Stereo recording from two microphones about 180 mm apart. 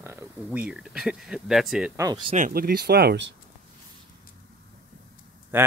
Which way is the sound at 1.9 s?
20° right (ahead or behind).